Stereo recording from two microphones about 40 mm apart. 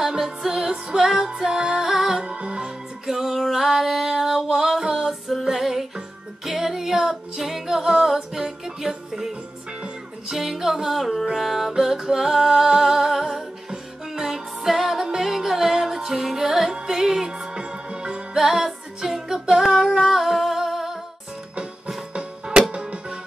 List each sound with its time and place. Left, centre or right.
0.0 s music: centre
2.2 s music: right
3.1 s music: centre
10.3 s music: centre; by 18.2 s right
18.3 s music: centre
19.7 s humming: centre
21.8 s music: right